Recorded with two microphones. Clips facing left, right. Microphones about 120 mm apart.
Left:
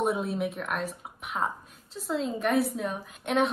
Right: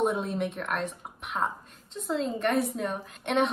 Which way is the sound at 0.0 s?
Centre (ahead or behind).